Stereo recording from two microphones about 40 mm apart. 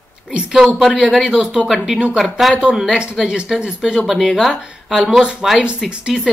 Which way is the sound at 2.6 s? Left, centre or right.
Centre.